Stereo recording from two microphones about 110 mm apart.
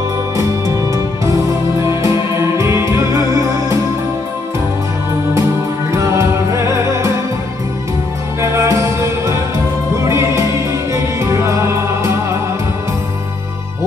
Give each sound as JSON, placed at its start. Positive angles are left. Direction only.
{"t": 1.8, "sound": "music", "side_deg": -30}
{"t": 5.9, "sound": "music", "side_deg": -25}
{"t": 8.4, "sound": "music", "side_deg": -30}